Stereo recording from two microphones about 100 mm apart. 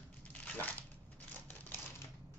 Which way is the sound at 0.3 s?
15° left (ahead or behind).